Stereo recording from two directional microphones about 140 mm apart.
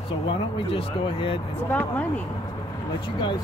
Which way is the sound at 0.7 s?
40° left (ahead or behind).